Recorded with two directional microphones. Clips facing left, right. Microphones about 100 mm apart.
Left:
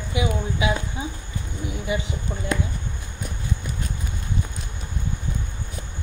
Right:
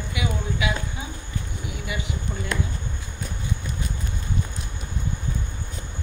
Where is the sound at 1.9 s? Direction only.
30° left (ahead or behind).